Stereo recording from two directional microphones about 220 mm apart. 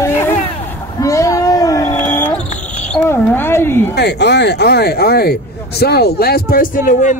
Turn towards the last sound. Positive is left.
turn(degrees=35)  # may be behind; listen again after turning